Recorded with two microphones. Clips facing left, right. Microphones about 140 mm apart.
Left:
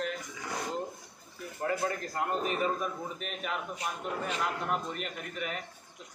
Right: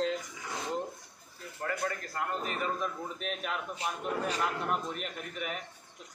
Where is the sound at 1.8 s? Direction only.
15° left (ahead or behind).